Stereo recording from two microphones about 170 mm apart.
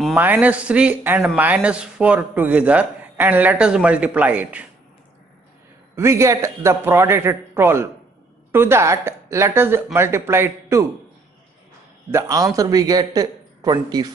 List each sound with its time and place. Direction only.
0.1 s a man's voice: 10° right (ahead or behind)
5.9 s a man's voice: 15° right (ahead or behind)
12.1 s a man's voice: 20° right (ahead or behind)